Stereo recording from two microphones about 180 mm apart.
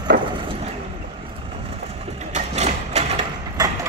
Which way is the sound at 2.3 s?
40° right (ahead or behind).